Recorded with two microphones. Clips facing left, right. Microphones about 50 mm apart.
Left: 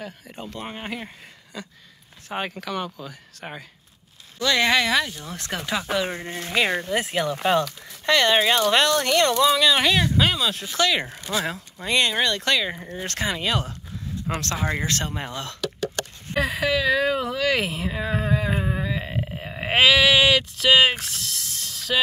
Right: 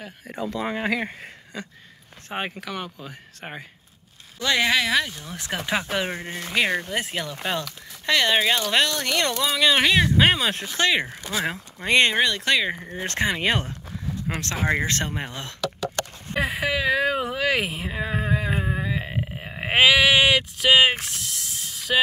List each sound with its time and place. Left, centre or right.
0.3 s speech: right
2.3 s speech: centre
4.6 s speech: centre
8.1 s speech: centre
10.2 s speech: right
11.0 s speech: centre
11.4 s speech: right
12.2 s speech: centre
13.4 s speech: right
14.3 s speech: centre
14.6 s speech: right
15.1 s speech: centre
17.5 s speech: centre
21.0 s a sound: centre